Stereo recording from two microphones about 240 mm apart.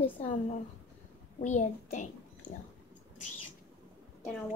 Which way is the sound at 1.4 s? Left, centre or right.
Left.